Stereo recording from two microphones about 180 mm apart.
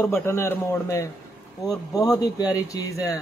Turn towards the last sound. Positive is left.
turn(degrees=20)  # may be behind; listen again after turning